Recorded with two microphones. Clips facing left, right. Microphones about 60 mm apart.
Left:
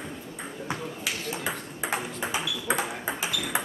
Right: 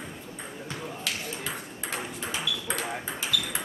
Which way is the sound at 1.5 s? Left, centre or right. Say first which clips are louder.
Left 4 dB; centre.